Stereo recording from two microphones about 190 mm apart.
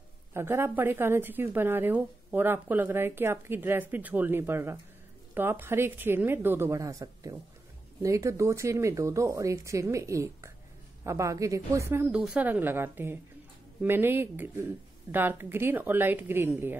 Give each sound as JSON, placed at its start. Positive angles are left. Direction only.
{"t": 0.3, "sound": "a woman's voice", "side_deg": -15}